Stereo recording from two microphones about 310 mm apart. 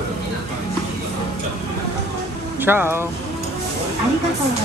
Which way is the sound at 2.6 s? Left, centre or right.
Centre.